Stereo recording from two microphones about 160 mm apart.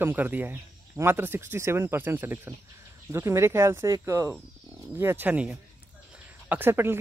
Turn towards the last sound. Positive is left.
turn(degrees=-15)  # may be behind; listen again after turning